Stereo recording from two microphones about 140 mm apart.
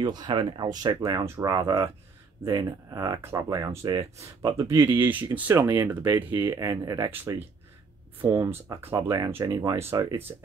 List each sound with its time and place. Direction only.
0.0 s speech: 30° right (ahead or behind); by 6.2 s 10° right (ahead or behind)
6.3 s speech: 25° right (ahead or behind)
8.2 s speech: 20° right (ahead or behind)